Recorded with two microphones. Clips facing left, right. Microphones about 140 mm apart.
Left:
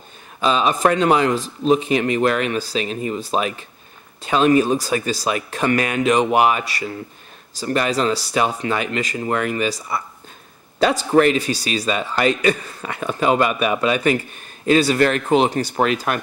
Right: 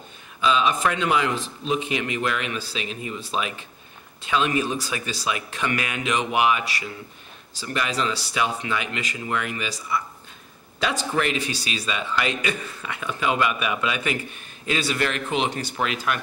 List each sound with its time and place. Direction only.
0.4 s a man's voice: 40° left (ahead or behind)